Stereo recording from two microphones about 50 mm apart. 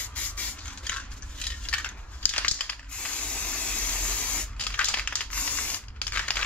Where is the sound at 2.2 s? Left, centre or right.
Left.